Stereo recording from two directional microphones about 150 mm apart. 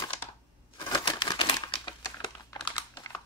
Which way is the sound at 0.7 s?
25° left (ahead or behind).